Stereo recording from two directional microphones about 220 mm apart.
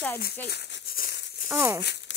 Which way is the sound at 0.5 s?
50° left (ahead or behind).